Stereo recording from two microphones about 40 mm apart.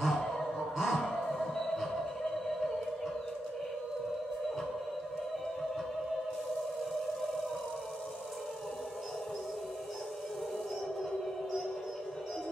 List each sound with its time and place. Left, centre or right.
0.0 s music: centre